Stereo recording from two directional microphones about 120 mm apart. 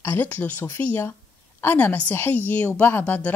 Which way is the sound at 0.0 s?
15° left (ahead or behind).